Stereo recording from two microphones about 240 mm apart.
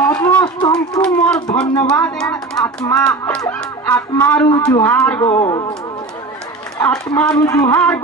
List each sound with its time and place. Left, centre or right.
0.0 s a sound: centre
1.0 s speech: centre
5.4 s speech: centre
6.9 s speech: centre